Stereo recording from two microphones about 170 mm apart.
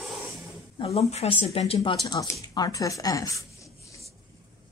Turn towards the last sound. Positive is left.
turn(degrees=20)  # may be behind; listen again after turning